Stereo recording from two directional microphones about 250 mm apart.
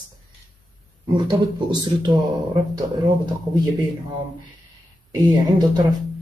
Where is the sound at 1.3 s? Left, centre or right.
Centre.